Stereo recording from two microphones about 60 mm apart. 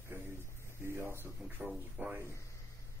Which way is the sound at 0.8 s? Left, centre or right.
Right.